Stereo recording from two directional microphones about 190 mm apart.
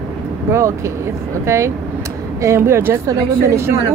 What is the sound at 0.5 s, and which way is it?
Speech, 15° right (ahead or behind).